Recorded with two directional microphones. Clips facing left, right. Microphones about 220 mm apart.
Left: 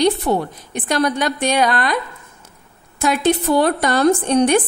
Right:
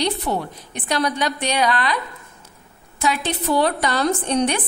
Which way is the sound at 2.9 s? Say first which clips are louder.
Left 6 dB; 50° left (ahead or behind).